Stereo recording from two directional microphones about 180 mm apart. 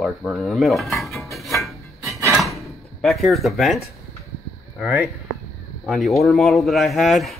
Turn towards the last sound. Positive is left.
turn(degrees=0)  # may be behind; listen again after turning